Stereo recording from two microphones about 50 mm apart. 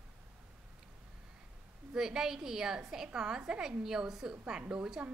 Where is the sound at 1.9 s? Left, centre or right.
Centre.